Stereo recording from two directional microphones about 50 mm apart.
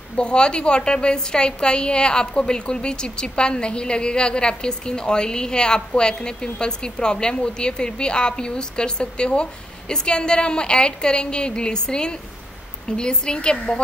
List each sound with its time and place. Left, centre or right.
0.1 s a woman's voice: centre